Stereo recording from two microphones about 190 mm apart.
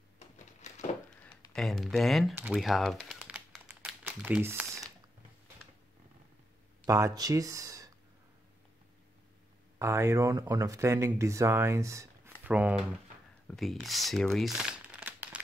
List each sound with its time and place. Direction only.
0.6 s a sound: 35° left (ahead or behind)
1.5 s speech: centre (ahead or behind)
2.5 s crumpling: centre (ahead or behind)
6.9 s speech: 15° right (ahead or behind)
9.8 s speech: 15° right (ahead or behind)
14.3 s crumpling: centre (ahead or behind)